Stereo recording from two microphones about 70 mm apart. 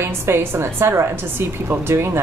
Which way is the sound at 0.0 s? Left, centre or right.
Right.